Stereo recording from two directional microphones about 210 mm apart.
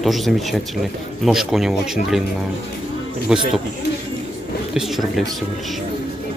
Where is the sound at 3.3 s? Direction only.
5° right (ahead or behind).